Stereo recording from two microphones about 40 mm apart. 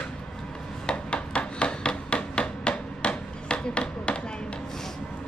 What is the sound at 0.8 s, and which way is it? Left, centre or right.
Hammer, left.